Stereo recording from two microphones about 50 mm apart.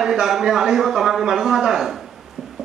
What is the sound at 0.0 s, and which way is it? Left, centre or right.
A man's voice, centre.